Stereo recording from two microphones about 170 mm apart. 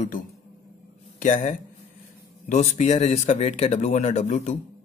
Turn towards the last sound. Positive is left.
turn(degrees=45)  # may be behind; listen again after turning